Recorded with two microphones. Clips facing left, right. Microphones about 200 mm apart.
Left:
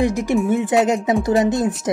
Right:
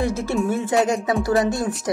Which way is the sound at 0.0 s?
15° left (ahead or behind).